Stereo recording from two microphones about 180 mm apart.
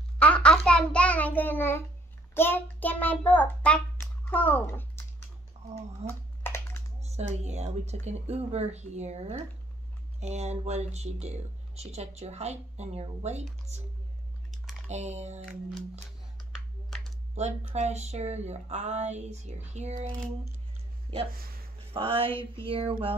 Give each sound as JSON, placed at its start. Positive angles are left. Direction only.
{"t": 0.2, "sound": "a child's voice", "side_deg": 5}
{"t": 6.0, "sound": "a sound", "side_deg": 10}
{"t": 7.0, "sound": "speech", "side_deg": -35}
{"t": 14.9, "sound": "speech", "side_deg": -40}
{"t": 16.5, "sound": "a sound", "side_deg": 0}
{"t": 17.4, "sound": "speech", "side_deg": -40}
{"t": 21.9, "sound": "speech", "side_deg": -30}